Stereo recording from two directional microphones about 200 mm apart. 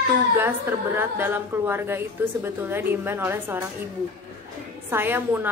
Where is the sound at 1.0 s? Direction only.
10° right (ahead or behind).